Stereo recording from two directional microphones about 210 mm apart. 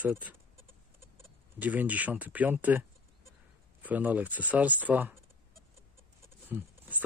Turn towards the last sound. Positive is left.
turn(degrees=-10)  # may be behind; listen again after turning